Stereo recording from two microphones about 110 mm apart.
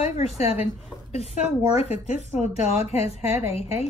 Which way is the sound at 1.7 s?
70° left (ahead or behind).